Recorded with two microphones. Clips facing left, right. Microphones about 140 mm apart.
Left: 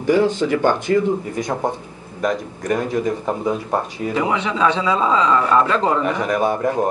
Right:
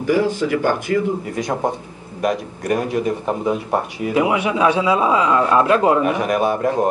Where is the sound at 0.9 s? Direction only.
35° left (ahead or behind).